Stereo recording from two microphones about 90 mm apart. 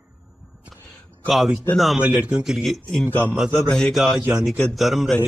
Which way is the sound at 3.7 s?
10° left (ahead or behind).